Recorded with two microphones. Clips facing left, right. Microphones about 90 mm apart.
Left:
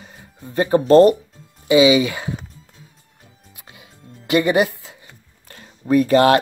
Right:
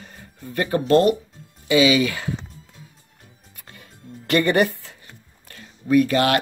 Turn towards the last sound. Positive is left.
turn(degrees=35)  # may be behind; listen again after turning